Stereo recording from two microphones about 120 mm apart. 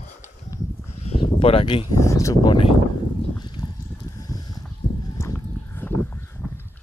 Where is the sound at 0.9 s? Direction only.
55° left (ahead or behind).